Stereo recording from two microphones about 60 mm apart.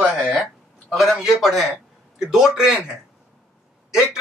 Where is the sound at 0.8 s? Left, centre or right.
Centre.